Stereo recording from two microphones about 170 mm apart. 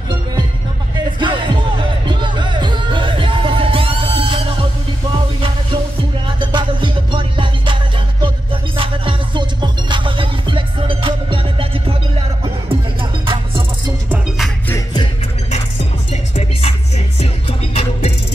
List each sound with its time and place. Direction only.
0.9 s music: 25° right (ahead or behind)
6.2 s music: 30° right (ahead or behind)
13.3 s music: 30° right (ahead or behind)
16.1 s music: 40° left (ahead or behind)